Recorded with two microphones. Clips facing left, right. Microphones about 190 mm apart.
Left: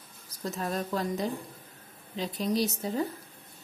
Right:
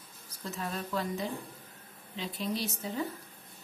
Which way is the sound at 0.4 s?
40° left (ahead or behind).